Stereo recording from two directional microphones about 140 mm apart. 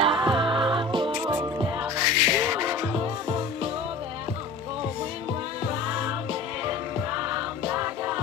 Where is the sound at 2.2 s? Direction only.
10° right (ahead or behind).